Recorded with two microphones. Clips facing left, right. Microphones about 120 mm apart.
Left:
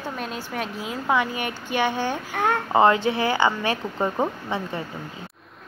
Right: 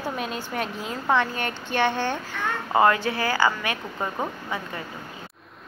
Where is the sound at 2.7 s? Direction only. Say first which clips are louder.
Left 1 dB; 20° left (ahead or behind).